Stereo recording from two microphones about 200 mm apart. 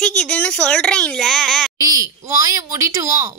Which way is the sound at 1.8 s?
20° right (ahead or behind).